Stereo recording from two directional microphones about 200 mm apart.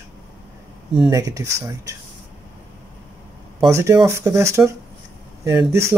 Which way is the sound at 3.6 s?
20° right (ahead or behind).